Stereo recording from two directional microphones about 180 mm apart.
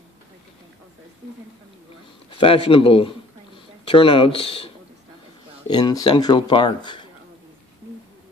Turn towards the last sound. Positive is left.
turn(degrees=25)  # may be behind; listen again after turning